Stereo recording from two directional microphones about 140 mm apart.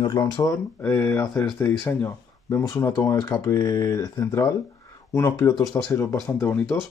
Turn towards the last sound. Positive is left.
turn(degrees=20)  # may be behind; listen again after turning